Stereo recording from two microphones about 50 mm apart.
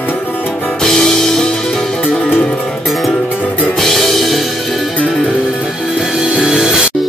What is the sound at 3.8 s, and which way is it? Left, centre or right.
Music, centre.